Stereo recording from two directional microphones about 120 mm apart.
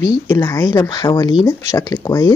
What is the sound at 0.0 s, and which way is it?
Speech, 25° left (ahead or behind).